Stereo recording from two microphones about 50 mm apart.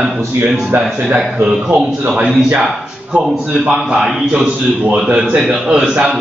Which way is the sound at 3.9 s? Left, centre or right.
Centre.